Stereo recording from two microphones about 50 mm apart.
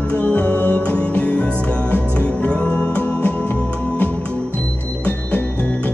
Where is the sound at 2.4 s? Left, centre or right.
Left.